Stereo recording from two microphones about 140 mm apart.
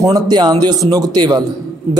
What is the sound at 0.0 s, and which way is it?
A man's voice, 30° right (ahead or behind).